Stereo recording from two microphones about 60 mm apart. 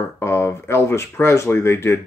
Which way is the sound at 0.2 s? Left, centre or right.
Left.